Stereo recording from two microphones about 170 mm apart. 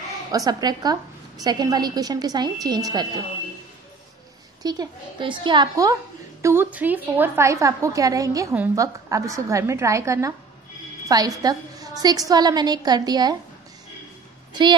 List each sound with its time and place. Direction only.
0.3 s a woman's voice: 20° right (ahead or behind)
4.6 s a woman's voice: 25° right (ahead or behind)
6.4 s a woman's voice: 15° right (ahead or behind)
14.5 s a woman's voice: 25° right (ahead or behind)